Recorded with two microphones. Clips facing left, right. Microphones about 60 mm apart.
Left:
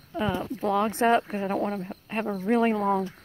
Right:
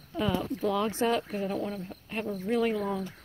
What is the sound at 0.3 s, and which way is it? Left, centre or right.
Speech, left.